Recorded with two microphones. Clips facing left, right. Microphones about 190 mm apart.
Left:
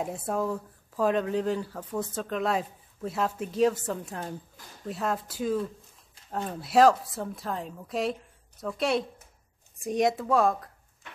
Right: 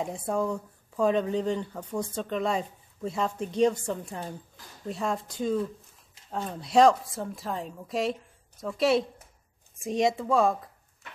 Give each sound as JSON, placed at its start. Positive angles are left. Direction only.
{"t": 0.0, "sound": "speech", "side_deg": 5}